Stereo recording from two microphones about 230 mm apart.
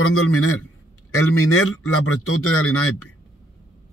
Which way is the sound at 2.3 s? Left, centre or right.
Left.